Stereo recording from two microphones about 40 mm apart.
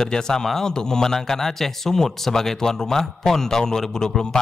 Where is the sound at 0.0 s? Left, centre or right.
Centre.